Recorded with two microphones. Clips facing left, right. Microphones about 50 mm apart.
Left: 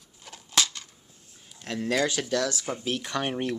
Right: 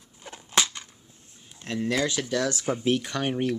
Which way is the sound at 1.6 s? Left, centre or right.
Right.